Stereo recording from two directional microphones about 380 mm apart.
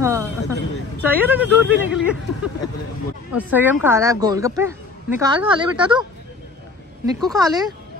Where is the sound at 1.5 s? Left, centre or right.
Left.